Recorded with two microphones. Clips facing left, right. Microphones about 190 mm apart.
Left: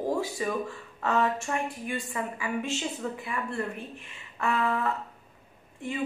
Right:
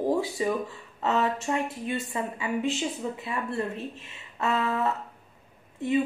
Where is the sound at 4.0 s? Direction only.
25° right (ahead or behind).